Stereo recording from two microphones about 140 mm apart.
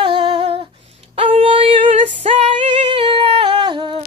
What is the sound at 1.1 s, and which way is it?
Female singing, 40° right (ahead or behind).